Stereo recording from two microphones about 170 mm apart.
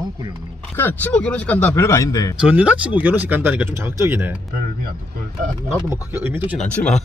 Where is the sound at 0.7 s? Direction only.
10° left (ahead or behind).